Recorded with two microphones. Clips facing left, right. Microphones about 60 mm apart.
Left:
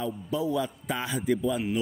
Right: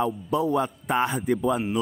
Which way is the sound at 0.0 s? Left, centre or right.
Right.